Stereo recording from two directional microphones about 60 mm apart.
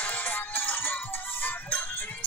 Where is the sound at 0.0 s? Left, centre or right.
Left.